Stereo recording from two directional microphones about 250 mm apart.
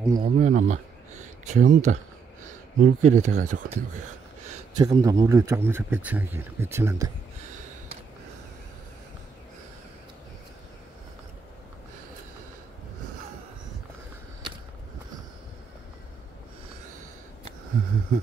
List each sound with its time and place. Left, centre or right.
0.0 s speech: centre
0.4 s speech: right
4.7 s speech: centre